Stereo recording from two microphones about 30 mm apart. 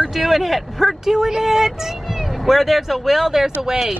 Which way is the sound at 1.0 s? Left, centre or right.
Centre.